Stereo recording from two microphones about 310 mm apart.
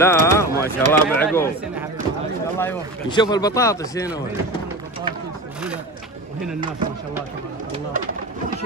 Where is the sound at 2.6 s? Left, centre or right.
Centre.